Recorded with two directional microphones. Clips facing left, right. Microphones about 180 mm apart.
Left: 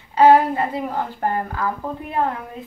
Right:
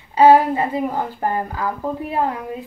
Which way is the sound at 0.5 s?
15° right (ahead or behind).